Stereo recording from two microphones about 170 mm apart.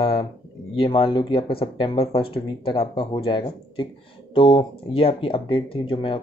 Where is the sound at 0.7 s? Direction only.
30° left (ahead or behind).